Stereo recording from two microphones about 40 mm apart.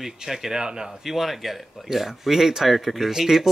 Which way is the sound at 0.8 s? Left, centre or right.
Centre.